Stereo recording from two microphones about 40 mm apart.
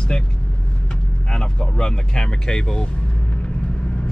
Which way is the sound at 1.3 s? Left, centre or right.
Left.